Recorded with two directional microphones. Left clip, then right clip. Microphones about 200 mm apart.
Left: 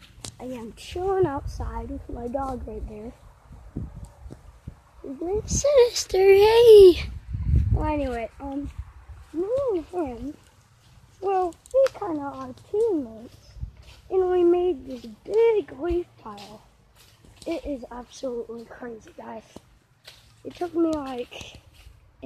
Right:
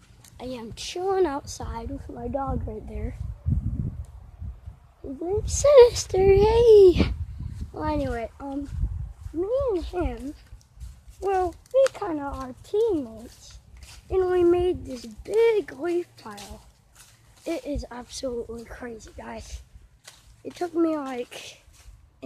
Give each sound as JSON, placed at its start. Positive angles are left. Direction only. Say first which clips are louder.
{"t": 0.4, "sound": "a woman's voice", "louder": "right 2 dB", "side_deg": -10}
{"t": 5.2, "sound": "speech", "louder": "right 2 dB", "side_deg": -25}
{"t": 6.0, "sound": "speech", "louder": "left 2 dB", "side_deg": -5}
{"t": 14.0, "sound": "speech", "louder": "left 1 dB", "side_deg": 5}
{"t": 16.3, "sound": "a woman's voice", "louder": "even", "side_deg": -15}